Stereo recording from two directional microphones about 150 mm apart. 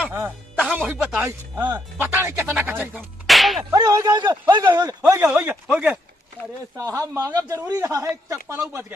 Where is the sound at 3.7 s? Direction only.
25° right (ahead or behind).